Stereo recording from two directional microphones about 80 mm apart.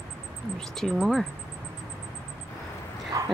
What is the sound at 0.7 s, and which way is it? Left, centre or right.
Speech, centre.